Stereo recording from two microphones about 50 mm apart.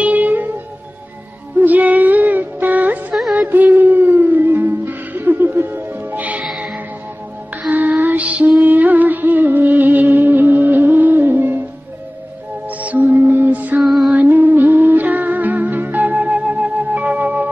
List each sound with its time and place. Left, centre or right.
0.0 s music: right
1.6 s music: right
7.6 s music: right
12.6 s music: right
13.8 s female singing: centre
14.1 s music: right